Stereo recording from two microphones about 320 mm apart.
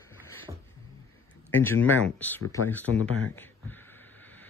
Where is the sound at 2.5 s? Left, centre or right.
Centre.